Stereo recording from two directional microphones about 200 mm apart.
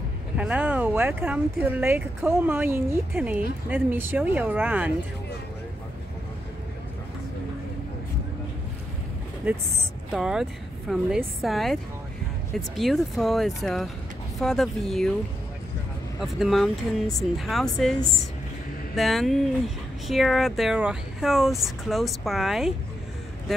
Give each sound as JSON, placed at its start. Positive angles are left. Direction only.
{"t": 0.4, "sound": "speech", "side_deg": -5}
{"t": 10.1, "sound": "speech", "side_deg": 0}
{"t": 16.2, "sound": "speech", "side_deg": 0}
{"t": 18.9, "sound": "speech", "side_deg": 0}